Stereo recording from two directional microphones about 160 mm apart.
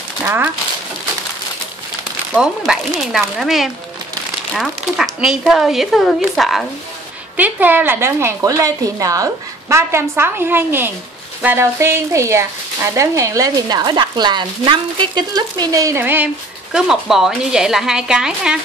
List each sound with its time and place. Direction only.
0.2 s a woman's voice: 15° right (ahead or behind)
2.3 s speech: 5° right (ahead or behind)
7.3 s a woman's voice: 10° right (ahead or behind)